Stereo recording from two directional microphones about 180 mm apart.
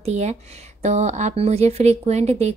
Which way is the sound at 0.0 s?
40° right (ahead or behind).